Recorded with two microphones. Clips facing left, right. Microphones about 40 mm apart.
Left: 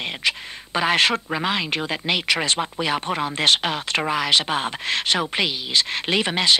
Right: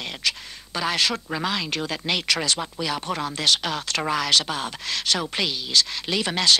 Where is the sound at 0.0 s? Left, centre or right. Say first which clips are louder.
Left 4 dB; left.